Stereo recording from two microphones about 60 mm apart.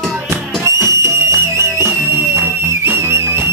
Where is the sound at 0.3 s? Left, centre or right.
Right.